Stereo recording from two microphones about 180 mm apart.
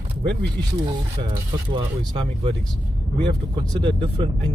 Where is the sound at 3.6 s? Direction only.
30° right (ahead or behind).